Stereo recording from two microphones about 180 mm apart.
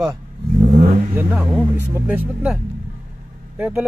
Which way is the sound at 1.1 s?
5° right (ahead or behind).